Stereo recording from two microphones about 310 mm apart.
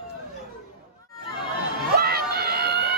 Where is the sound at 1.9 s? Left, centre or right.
Right.